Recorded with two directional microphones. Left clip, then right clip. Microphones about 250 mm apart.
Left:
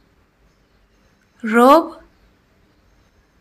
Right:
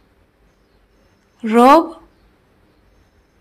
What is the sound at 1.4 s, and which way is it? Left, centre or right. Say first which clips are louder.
Speech: right 1 dB; centre.